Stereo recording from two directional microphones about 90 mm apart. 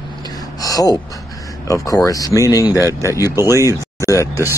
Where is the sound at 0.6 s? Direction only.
40° left (ahead or behind).